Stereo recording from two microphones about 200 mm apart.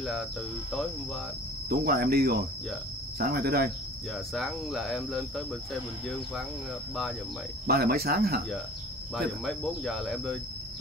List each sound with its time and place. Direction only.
0.0 s speech: centre (ahead or behind)
1.7 s cricket: 50° right (ahead or behind)
4.3 s cricket: centre (ahead or behind)
7.6 s cricket: 50° right (ahead or behind)
9.1 s cricket: centre (ahead or behind)